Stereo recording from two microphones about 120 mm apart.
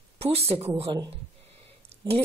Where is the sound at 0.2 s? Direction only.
55° right (ahead or behind).